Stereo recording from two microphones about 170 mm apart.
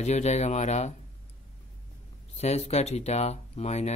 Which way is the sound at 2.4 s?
40° left (ahead or behind).